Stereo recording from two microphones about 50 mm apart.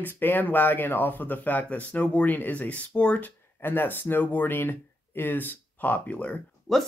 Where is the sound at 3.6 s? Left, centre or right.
Left.